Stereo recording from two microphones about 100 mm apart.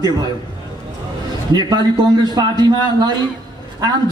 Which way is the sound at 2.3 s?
45° right (ahead or behind).